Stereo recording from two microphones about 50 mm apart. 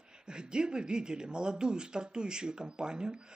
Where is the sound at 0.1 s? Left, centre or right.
Centre.